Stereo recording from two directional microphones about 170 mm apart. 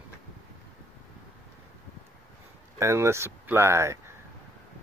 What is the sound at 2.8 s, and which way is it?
Speech, 15° right (ahead or behind).